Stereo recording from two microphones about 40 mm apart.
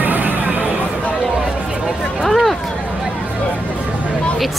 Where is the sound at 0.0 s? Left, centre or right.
Right.